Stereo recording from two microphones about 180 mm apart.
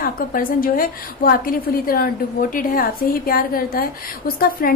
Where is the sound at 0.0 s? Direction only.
55° left (ahead or behind).